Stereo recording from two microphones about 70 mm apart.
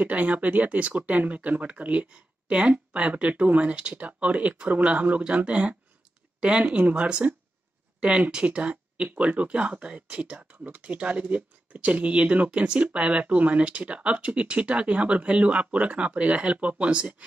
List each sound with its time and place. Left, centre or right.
0.0 s speech: right